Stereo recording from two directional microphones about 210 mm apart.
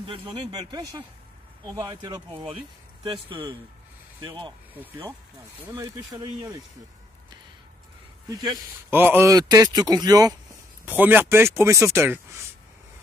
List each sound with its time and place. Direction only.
0.3 s speech: 20° right (ahead or behind)
4.7 s a man's voice: 10° right (ahead or behind)
8.3 s a man's voice: 15° right (ahead or behind)